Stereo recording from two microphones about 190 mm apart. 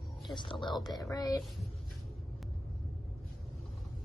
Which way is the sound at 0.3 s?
25° left (ahead or behind).